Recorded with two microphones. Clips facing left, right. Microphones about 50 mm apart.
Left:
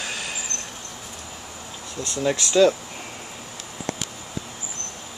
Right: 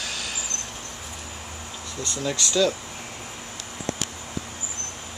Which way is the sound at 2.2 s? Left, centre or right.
Left.